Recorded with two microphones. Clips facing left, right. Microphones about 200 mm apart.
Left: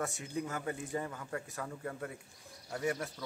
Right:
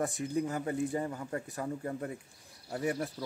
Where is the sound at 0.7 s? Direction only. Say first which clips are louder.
Right 5 dB; 25° right (ahead or behind).